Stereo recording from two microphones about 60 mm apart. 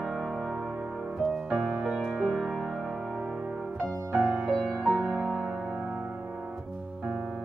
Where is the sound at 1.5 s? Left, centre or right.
Centre.